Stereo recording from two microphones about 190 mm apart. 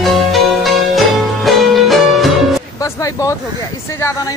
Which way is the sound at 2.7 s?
15° left (ahead or behind).